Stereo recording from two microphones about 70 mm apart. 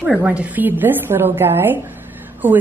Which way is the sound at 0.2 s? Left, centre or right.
Right.